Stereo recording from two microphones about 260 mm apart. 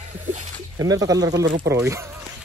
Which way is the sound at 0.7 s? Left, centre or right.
Centre.